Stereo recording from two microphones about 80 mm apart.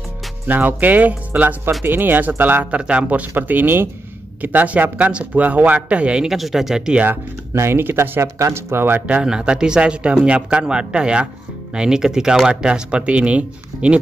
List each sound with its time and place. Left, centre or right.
0.5 s speech: right
6.3 s speech: centre
7.5 s speech: right
9.0 s speech: centre